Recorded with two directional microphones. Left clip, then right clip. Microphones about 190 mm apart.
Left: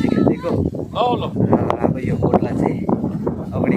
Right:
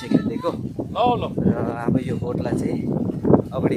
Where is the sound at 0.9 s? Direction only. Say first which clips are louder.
Left 1 dB; 50° left (ahead or behind).